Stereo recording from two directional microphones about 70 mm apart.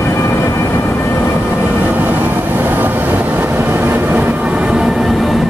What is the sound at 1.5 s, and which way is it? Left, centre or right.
Vehicle, right.